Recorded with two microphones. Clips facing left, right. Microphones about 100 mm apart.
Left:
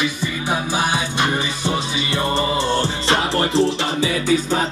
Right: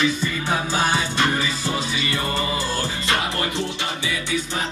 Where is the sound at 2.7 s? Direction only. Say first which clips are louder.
Left 5 dB; 30° left (ahead or behind).